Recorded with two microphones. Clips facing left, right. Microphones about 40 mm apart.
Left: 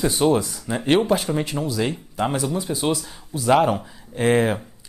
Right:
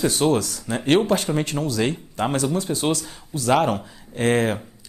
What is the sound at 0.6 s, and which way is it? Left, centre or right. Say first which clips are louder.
Speech: even; centre.